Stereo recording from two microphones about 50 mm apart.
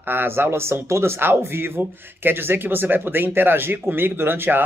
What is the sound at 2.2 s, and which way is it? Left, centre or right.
Speech, right.